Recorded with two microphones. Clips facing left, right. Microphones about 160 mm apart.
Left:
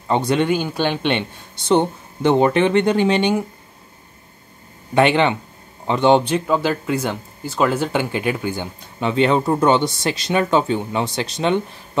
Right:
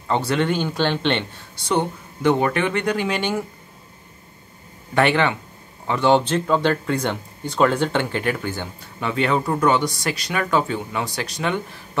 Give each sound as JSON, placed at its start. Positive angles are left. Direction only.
{"t": 0.1, "sound": "speech", "side_deg": 20}
{"t": 4.9, "sound": "speech", "side_deg": 20}